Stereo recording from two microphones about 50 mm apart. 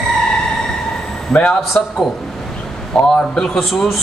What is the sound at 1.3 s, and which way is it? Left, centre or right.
Speech, centre.